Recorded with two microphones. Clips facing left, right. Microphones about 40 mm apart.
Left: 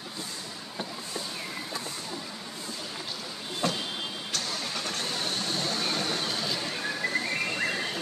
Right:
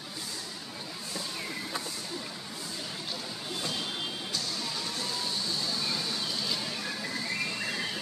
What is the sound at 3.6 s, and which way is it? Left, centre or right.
Vehicle, left.